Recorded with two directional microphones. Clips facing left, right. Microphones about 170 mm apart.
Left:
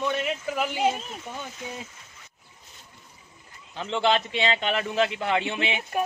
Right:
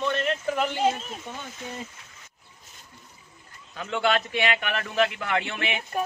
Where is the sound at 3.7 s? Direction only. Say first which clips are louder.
Left 1 dB; 25° left (ahead or behind).